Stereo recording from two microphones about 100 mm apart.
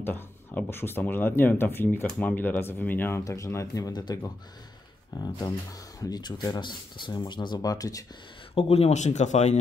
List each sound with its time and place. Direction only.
0.0 s speech: 20° left (ahead or behind)
8.5 s speech: 85° left